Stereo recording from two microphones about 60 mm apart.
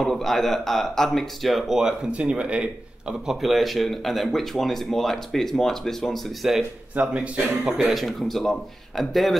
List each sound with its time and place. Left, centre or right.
0.0 s speech: centre
1.8 s speech: centre
3.3 s speech: centre
7.0 s speech: right
7.6 s speech: centre